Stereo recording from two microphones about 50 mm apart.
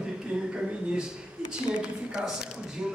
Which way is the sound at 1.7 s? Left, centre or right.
Centre.